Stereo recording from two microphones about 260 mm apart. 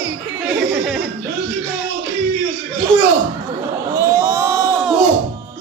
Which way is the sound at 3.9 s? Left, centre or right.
Centre.